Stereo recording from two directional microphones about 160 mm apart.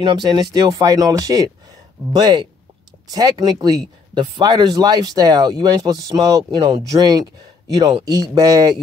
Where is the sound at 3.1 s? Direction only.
25° right (ahead or behind).